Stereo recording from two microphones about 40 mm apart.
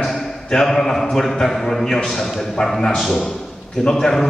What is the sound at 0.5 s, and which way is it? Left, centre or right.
A man's voice, centre.